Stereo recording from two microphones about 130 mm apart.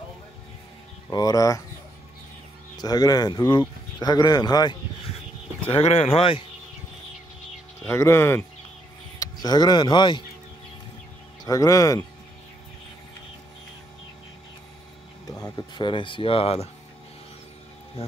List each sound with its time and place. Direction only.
1.1 s speech: 30° left (ahead or behind)
2.8 s speech: 30° left (ahead or behind)
5.7 s speech: 50° left (ahead or behind)
7.9 s speech: 20° left (ahead or behind)
9.2 s speech: 30° left (ahead or behind)
11.4 s speech: 25° left (ahead or behind)
15.2 s speech: 30° left (ahead or behind); by 16.6 s 45° left (ahead or behind)
18.0 s speech: 50° left (ahead or behind)